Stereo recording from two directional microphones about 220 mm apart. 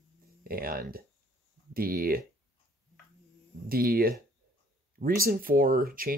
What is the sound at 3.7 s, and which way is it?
Speech, 40° right (ahead or behind).